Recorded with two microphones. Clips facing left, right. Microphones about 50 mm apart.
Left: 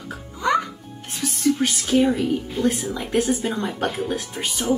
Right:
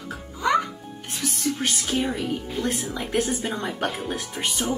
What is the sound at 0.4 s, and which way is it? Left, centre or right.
Music, centre.